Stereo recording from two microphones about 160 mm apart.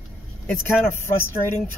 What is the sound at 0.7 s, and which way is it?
Speech, 15° left (ahead or behind).